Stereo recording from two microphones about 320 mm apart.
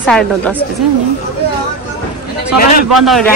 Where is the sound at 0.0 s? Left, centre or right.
Centre.